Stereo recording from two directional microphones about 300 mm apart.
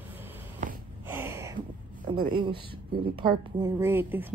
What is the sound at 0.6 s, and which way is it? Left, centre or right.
Snort, right.